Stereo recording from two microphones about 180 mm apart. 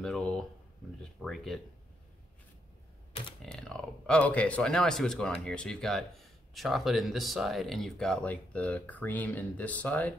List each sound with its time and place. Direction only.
0.0 s a sound: 5° left (ahead or behind)
1.2 s speech: centre (ahead or behind)
3.1 s typewriter: 30° left (ahead or behind)
3.5 s speech: 5° left (ahead or behind)